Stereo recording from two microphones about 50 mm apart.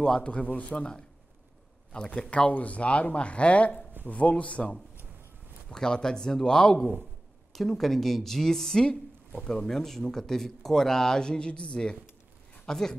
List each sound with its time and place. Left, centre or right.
0.0 s speech: left
1.9 s speech: left